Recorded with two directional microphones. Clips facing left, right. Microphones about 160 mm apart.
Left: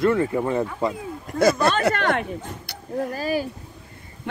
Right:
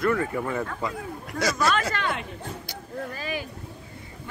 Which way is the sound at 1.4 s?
55° left (ahead or behind).